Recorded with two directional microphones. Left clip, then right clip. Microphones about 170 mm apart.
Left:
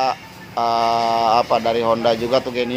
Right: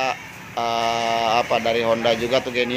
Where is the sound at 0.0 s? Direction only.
5° left (ahead or behind).